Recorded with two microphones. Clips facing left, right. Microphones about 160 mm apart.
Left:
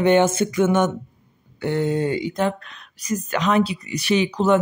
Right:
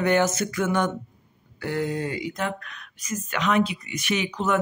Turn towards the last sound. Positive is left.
turn(degrees=35)  # may be behind; listen again after turning